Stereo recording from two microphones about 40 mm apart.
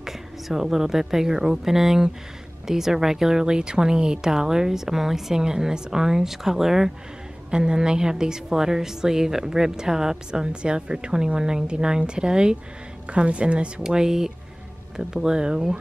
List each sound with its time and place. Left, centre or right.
0.0 s a woman's voice: centre; by 13.7 s right
13.8 s a woman's voice: centre